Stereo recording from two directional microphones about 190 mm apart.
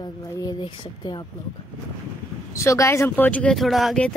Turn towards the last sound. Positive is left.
turn(degrees=0)  # may be behind; listen again after turning